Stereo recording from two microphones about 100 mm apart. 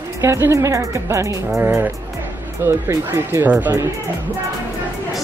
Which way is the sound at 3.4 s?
15° right (ahead or behind).